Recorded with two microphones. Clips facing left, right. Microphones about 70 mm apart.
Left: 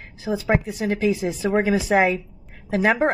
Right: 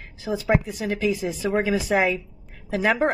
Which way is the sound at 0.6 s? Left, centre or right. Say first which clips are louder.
Left 3 dB; left.